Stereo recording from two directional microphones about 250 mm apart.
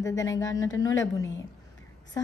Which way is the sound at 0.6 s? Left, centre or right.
Left.